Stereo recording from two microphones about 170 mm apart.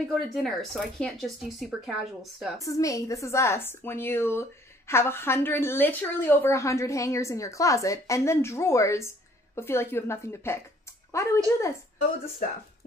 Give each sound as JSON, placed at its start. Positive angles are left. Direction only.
{"t": 0.1, "sound": "speech", "side_deg": 0}
{"t": 2.6, "sound": "a woman's voice", "side_deg": 20}